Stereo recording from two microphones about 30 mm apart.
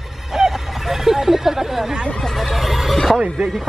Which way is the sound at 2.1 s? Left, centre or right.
Centre.